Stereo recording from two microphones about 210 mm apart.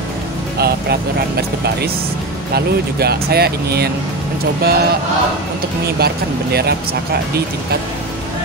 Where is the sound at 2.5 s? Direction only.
50° right (ahead or behind).